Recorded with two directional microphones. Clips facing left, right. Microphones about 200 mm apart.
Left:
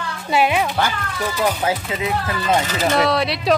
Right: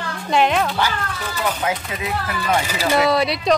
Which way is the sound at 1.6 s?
25° left (ahead or behind).